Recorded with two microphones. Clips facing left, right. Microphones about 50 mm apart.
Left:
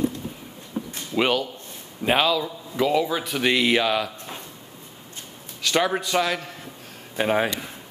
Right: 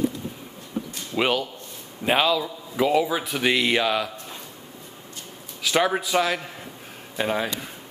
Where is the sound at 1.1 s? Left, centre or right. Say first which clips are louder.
Left 1 dB; centre.